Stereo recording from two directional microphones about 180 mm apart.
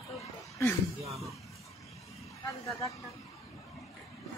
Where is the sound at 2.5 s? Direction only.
15° left (ahead or behind).